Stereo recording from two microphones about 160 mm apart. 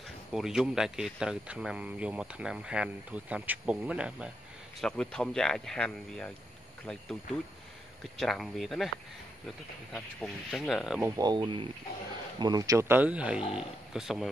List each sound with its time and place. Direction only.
0.3 s speech: 5° right (ahead or behind)
4.7 s speech: 5° left (ahead or behind)
8.2 s speech: centre (ahead or behind)
9.9 s speech: 5° left (ahead or behind)
11.0 s speech: 15° right (ahead or behind)
11.2 s speech: 25° right (ahead or behind); by 14.3 s centre (ahead or behind)